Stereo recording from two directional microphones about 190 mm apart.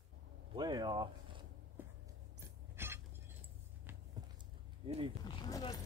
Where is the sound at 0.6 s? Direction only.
20° right (ahead or behind).